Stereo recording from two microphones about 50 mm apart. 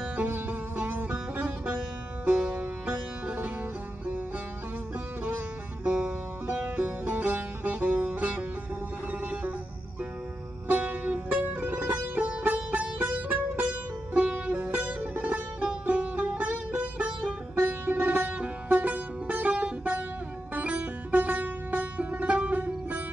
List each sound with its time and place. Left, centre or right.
0.2 s music: right
5.9 s music: right
10.7 s music: right
17.6 s music: right